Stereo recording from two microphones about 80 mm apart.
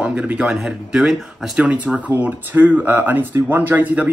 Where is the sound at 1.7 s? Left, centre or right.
Centre.